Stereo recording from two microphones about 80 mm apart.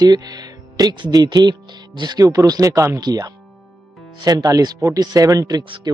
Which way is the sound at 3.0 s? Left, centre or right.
Right.